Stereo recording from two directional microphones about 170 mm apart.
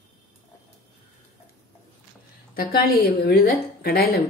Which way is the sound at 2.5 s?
60° left (ahead or behind).